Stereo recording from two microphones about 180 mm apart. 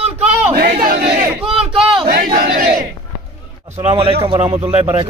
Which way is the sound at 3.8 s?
30° right (ahead or behind).